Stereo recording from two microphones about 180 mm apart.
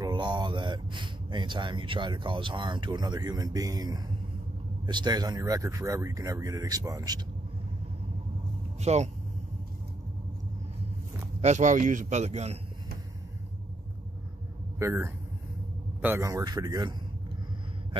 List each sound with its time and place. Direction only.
0.0 s speech: 25° right (ahead or behind)
8.8 s a man's voice: 40° right (ahead or behind)
11.4 s a man's voice: 40° right (ahead or behind)
14.8 s speech: 15° right (ahead or behind)